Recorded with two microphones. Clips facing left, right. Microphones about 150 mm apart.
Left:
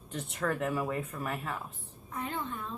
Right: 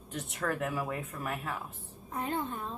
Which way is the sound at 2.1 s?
35° right (ahead or behind).